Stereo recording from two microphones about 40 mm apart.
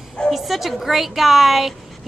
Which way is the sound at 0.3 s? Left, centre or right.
Centre.